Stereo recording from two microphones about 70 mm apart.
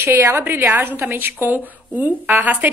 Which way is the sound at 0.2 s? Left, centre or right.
Right.